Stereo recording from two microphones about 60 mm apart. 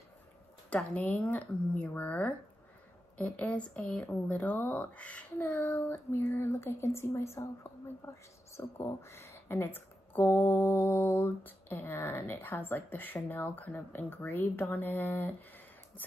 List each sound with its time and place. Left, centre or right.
0.9 s a woman's voice: left
6.1 s a woman's voice: left